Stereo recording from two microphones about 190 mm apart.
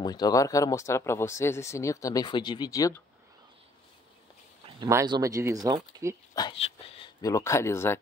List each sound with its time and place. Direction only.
0.0 s speech: 20° left (ahead or behind)
4.6 s speech: 20° right (ahead or behind)
6.3 s speech: 25° left (ahead or behind)